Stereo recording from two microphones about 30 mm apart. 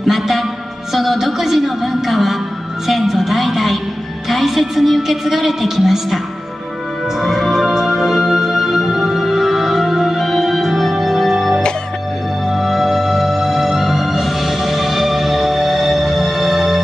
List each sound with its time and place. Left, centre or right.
0.0 s music: centre
0.9 s a woman's voice: centre
2.9 s music: centre
4.3 s a woman's voice: centre
7.2 s music: centre